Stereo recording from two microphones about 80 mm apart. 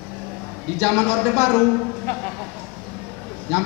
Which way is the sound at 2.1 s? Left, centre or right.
Left.